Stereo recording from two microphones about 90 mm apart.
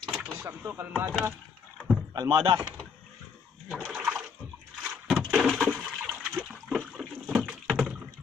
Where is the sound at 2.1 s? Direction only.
50° right (ahead or behind).